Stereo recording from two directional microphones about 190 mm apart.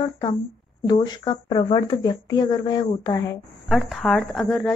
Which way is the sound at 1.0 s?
20° left (ahead or behind).